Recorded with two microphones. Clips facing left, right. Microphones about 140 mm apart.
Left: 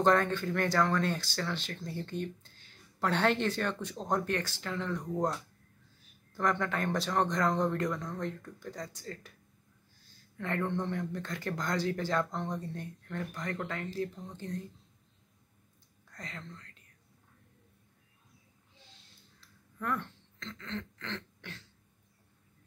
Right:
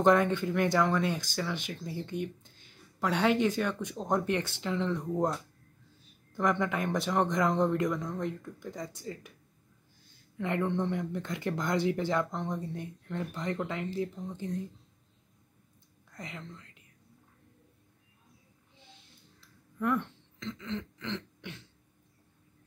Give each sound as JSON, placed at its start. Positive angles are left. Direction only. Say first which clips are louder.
{"t": 0.0, "sound": "speech", "louder": "right 3 dB", "side_deg": -15}
{"t": 6.3, "sound": "speech", "louder": "right 2 dB", "side_deg": -15}
{"t": 10.3, "sound": "speech", "louder": "right 3 dB", "side_deg": -15}
{"t": 16.1, "sound": "speech", "louder": "right 2 dB", "side_deg": -20}
{"t": 19.8, "sound": "speech", "louder": "right 5 dB", "side_deg": -15}